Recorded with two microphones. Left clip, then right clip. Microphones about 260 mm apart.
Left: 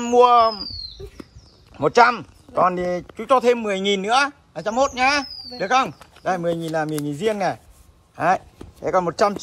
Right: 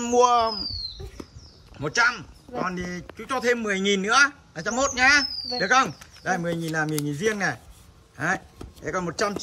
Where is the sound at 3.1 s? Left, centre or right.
Centre.